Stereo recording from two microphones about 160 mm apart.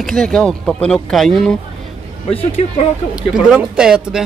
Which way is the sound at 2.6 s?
45° left (ahead or behind).